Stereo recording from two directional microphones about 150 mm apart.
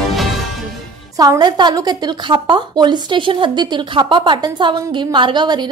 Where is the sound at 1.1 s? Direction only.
25° right (ahead or behind).